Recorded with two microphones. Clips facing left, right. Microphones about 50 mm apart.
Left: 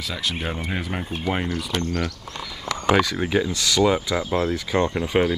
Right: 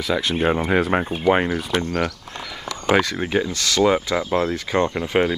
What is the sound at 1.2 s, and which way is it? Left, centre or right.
Speech, right.